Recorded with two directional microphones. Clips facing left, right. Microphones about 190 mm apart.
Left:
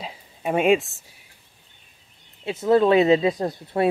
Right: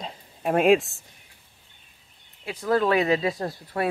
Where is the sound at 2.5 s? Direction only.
25° left (ahead or behind).